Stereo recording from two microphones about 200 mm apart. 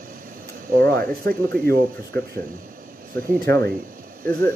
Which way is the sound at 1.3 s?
50° right (ahead or behind).